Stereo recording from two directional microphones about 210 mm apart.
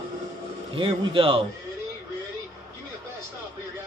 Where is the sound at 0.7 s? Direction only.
25° right (ahead or behind).